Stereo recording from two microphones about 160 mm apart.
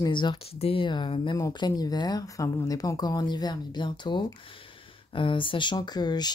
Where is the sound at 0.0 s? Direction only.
30° left (ahead or behind).